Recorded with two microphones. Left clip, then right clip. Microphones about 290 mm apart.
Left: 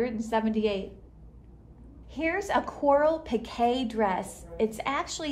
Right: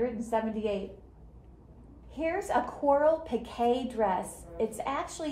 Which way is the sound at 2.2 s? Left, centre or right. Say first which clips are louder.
Left 2 dB; left.